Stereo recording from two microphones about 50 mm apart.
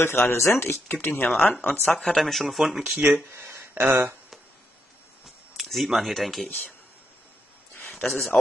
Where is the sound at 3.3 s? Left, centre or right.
Right.